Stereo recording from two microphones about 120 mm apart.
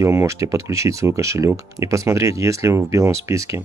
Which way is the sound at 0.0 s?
25° right (ahead or behind).